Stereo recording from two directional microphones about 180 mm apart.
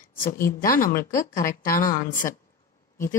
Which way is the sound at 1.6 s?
50° left (ahead or behind).